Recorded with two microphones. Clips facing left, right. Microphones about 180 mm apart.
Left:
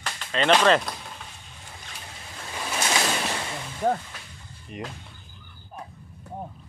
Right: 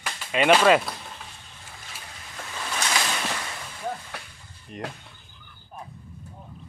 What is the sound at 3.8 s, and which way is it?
Speech, 50° left (ahead or behind).